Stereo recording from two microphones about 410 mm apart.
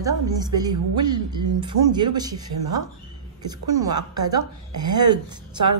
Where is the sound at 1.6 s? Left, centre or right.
Centre.